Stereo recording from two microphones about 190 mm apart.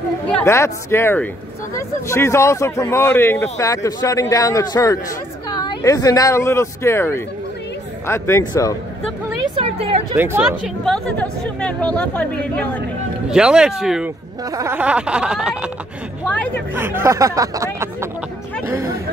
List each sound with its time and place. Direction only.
0.3 s speech: 10° left (ahead or behind)
9.6 s speech: 30° right (ahead or behind)
10.1 s speech: 10° right (ahead or behind)
10.9 s speech: 5° left (ahead or behind)
13.3 s a sound: 5° right (ahead or behind)
14.5 s a sound: 15° right (ahead or behind)
16.3 s speech: 10° left (ahead or behind)
16.7 s speech: 10° right (ahead or behind)